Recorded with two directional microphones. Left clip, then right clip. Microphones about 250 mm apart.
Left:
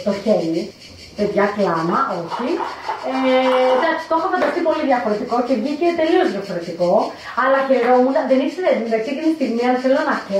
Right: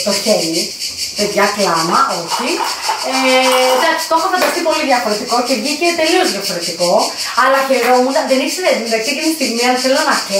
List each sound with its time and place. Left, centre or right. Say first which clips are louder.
0.1 s speech: right 3 dB; centre
2.4 s speech: right 5 dB; centre
5.5 s speech: right 4 dB; centre